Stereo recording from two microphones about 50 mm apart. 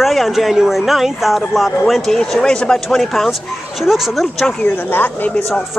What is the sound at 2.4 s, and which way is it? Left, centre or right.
Speech, centre.